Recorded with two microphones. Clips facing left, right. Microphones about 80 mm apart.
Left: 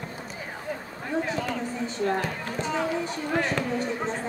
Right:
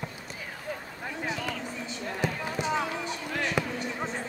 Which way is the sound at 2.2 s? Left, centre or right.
Centre.